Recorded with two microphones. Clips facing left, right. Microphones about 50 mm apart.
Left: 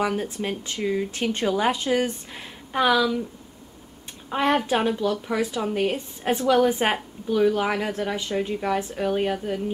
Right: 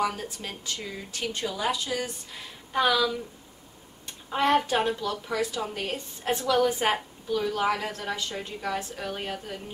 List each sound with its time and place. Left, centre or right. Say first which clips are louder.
0.0 s a woman's voice: left 4 dB; left
2.7 s a woman's voice: left 3 dB; centre
4.3 s a woman's voice: left 2 dB; centre